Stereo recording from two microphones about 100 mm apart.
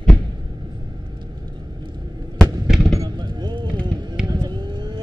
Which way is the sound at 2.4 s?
5° right (ahead or behind).